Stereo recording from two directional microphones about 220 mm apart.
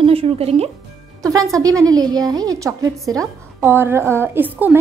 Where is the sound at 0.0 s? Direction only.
25° right (ahead or behind).